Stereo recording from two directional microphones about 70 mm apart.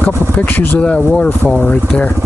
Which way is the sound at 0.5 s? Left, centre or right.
Centre.